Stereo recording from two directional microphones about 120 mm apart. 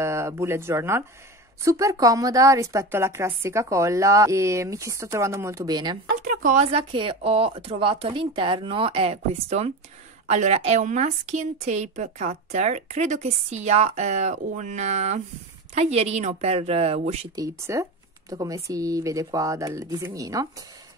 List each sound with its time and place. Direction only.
0.0 s a woman's voice: 25° right (ahead or behind)
6.2 s speech: 90° right
6.7 s a woman's voice: 45° right (ahead or behind); by 15.2 s 70° right (ahead or behind)
15.7 s speech: 60° right (ahead or behind)
17.4 s a woman's voice: 25° right (ahead or behind)